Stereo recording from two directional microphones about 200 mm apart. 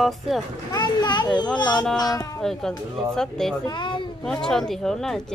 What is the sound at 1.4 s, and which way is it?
Speech, 5° left (ahead or behind).